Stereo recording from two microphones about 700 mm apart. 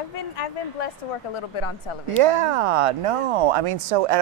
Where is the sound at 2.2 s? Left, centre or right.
Right.